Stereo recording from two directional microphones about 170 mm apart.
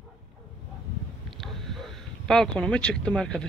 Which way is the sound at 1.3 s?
Centre (ahead or behind).